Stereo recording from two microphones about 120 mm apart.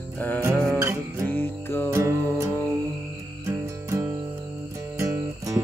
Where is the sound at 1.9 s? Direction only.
25° right (ahead or behind).